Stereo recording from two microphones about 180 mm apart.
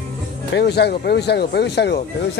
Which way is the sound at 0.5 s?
65° left (ahead or behind).